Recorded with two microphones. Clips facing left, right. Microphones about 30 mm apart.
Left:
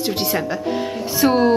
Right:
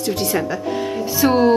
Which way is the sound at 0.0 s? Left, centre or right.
Left.